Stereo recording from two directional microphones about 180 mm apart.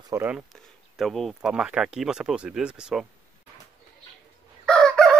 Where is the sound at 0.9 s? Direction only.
Centre (ahead or behind).